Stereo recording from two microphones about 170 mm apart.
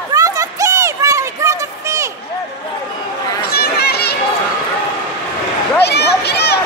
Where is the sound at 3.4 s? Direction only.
65° left (ahead or behind).